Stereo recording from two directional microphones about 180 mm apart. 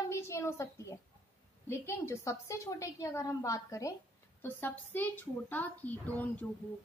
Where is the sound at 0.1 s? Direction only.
15° left (ahead or behind).